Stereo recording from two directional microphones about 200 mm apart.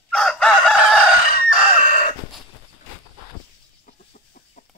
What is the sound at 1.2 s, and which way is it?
Chicken, 40° left (ahead or behind).